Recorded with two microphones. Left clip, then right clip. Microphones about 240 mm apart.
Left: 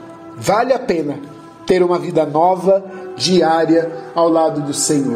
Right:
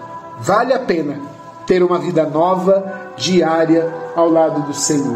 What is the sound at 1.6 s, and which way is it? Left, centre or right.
A man's voice, centre.